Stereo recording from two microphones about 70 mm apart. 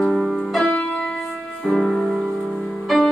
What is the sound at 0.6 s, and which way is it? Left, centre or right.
Music, left.